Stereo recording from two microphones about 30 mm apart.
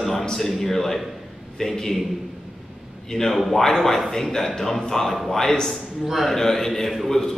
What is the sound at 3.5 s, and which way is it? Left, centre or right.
A man's voice, centre.